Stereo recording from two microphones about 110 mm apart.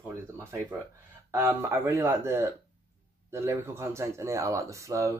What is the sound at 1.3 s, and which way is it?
Speech, 25° right (ahead or behind).